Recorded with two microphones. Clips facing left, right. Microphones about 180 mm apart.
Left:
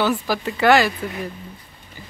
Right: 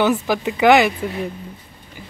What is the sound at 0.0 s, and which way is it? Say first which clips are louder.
Speech: right 3 dB; 20° right (ahead or behind).